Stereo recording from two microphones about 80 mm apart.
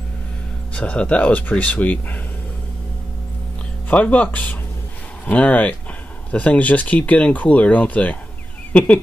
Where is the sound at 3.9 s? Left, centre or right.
Centre.